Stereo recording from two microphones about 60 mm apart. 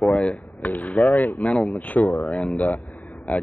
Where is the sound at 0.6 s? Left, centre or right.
Left.